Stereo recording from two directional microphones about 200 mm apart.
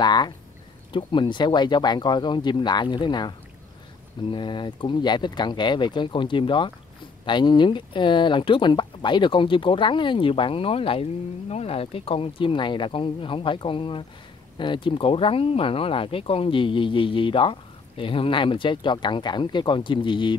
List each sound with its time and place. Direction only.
0.0 s speech: 20° left (ahead or behind)